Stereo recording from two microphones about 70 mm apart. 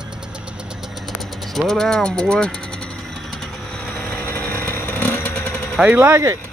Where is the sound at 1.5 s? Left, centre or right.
Centre.